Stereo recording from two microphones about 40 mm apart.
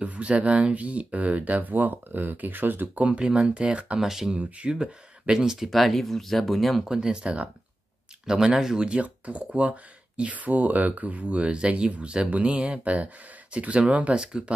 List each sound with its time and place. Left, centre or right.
0.0 s speech: right
2.9 s speech: right
4.0 s speech: centre
5.7 s speech: centre
6.8 s speech: centre
8.7 s speech: right
12.8 s speech: right
14.1 s speech: right